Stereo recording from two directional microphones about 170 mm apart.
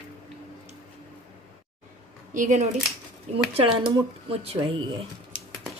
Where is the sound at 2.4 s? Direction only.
45° right (ahead or behind).